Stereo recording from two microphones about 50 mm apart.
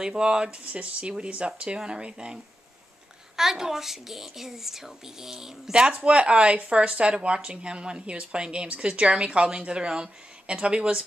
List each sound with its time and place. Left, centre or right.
0.0 s speech: centre